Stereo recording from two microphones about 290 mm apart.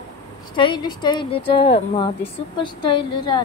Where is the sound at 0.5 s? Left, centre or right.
Centre.